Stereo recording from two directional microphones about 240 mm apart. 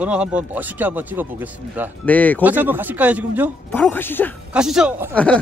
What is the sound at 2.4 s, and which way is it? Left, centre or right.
Speech, centre.